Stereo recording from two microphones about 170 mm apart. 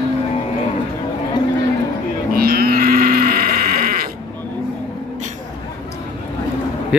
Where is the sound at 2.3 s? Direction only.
60° right (ahead or behind).